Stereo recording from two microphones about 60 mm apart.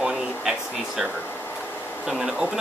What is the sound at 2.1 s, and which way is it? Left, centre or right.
Speech, centre.